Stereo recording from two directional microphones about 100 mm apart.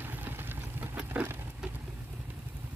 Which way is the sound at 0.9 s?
15° right (ahead or behind).